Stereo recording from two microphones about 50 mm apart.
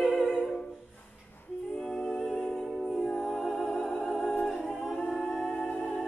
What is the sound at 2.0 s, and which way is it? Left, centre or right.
Humming, centre.